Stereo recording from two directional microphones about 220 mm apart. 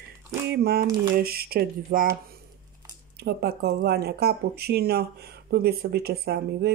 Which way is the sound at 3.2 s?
45° right (ahead or behind).